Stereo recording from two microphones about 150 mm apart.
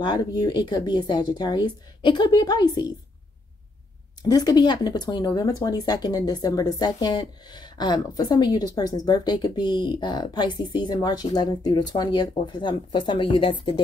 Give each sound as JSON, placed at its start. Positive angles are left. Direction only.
{"t": 0.0, "sound": "speech", "side_deg": 30}
{"t": 4.3, "sound": "speech", "side_deg": 25}